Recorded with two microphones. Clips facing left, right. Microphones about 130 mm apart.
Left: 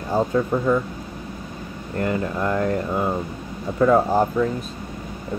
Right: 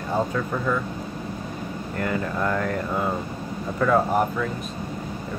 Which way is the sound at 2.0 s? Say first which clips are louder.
Left 3 dB; 25° left (ahead or behind).